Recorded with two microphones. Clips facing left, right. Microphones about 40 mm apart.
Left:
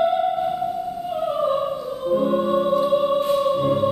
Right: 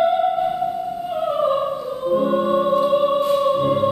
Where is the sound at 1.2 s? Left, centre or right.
Right.